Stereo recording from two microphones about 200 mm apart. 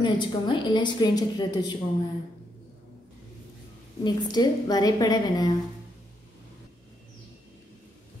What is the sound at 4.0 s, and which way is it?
A woman's voice, 20° left (ahead or behind).